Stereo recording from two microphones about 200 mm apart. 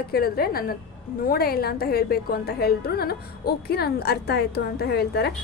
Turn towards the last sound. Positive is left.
turn(degrees=55)  # may be behind; listen again after turning